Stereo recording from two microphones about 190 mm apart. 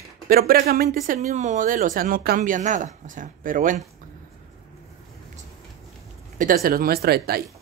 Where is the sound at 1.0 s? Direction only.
40° right (ahead or behind).